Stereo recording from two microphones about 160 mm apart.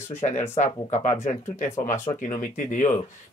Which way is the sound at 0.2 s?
45° left (ahead or behind).